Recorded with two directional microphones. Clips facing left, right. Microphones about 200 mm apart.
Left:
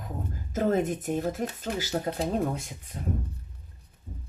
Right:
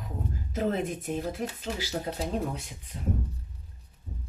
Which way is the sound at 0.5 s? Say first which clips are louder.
Left 4 dB; 45° left (ahead or behind).